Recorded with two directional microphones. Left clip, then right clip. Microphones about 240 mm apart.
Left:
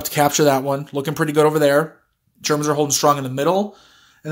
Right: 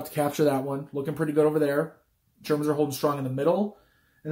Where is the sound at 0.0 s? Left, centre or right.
Left.